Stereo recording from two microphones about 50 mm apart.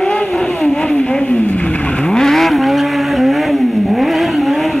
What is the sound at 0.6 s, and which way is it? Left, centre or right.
Vehicle, left.